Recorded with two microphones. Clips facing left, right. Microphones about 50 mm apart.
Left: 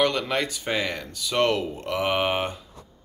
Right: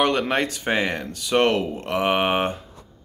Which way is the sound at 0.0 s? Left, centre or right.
Right.